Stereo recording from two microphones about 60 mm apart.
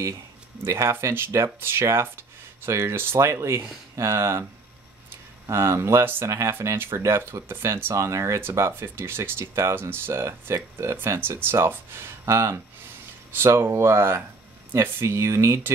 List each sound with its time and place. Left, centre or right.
0.0 s a sound: right
0.8 s speech: right
5.5 s speech: right
7.9 s speech: right
8.4 s speech: right